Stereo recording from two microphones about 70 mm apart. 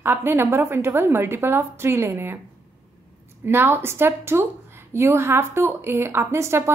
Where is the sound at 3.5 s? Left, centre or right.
Right.